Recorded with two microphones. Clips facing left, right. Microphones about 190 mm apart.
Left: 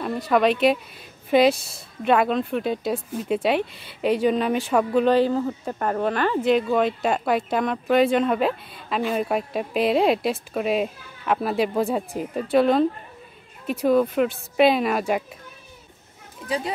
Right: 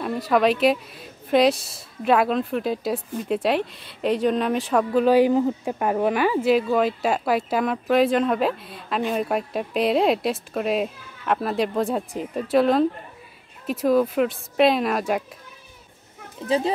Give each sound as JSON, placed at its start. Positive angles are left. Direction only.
{"t": 0.0, "sound": "speech", "side_deg": 0}
{"t": 16.4, "sound": "a child's voice", "side_deg": -25}